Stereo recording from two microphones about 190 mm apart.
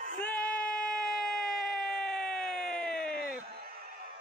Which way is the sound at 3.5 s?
55° right (ahead or behind).